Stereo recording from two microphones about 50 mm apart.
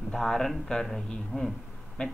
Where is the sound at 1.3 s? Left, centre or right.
Centre.